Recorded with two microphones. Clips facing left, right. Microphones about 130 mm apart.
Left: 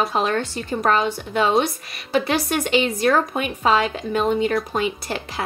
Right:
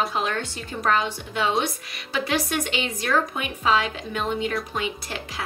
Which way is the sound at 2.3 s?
35° left (ahead or behind).